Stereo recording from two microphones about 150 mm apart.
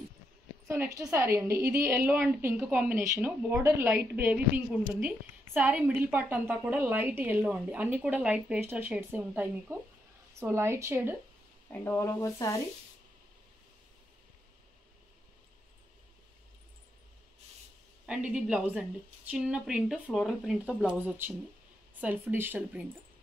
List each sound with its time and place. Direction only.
0.7 s a woman's voice: 20° right (ahead or behind)
11.7 s speech: 15° left (ahead or behind)
18.0 s a woman's voice: 5° right (ahead or behind)